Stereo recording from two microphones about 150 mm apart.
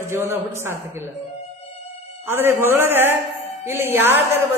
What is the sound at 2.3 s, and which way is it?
A man's voice, 15° right (ahead or behind).